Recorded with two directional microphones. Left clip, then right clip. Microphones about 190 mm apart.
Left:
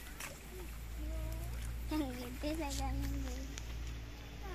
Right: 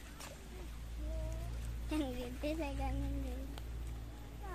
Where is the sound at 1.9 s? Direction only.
15° right (ahead or behind).